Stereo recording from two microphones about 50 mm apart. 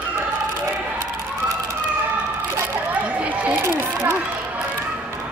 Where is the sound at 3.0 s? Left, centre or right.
Right.